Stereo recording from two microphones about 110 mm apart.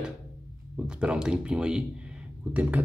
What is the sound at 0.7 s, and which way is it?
A man's voice, 10° right (ahead or behind).